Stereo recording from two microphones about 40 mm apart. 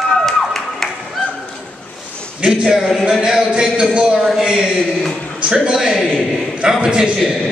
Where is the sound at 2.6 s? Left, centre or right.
Centre.